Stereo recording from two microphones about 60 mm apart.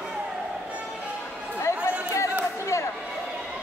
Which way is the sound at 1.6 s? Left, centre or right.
Left.